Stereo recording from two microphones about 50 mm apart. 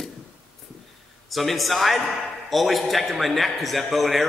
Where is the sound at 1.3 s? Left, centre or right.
Centre.